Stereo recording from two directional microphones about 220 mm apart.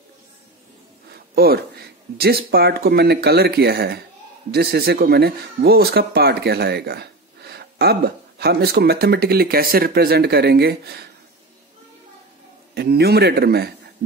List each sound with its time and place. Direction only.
1.3 s speech: 45° right (ahead or behind)
12.7 s speech: 45° right (ahead or behind)